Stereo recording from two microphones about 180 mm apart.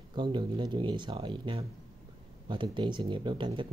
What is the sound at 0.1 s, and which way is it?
Speech, 25° right (ahead or behind).